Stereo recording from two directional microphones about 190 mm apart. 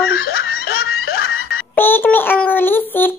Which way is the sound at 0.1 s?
55° left (ahead or behind).